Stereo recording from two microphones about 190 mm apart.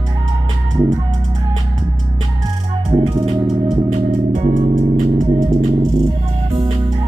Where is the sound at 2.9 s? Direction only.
25° right (ahead or behind).